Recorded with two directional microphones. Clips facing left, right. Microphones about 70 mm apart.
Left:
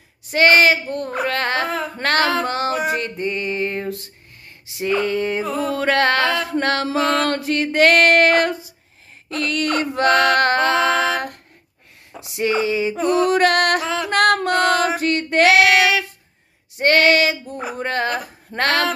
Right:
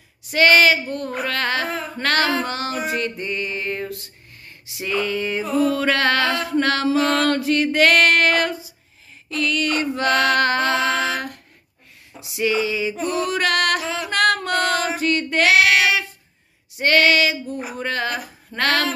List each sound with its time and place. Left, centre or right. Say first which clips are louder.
0.3 s a sound: left 1 dB; left
2.9 s music: left 2 dB; left
4.7 s a sound: left 3 dB; left
9.3 s music: left 1 dB; left
12.1 s a sound: left 1 dB; left
13.1 s music: left 7 dB; left
13.8 s music: left 3 dB; left
14.1 s female singing: left 3 dB; left
16.7 s female singing: left 2 dB; left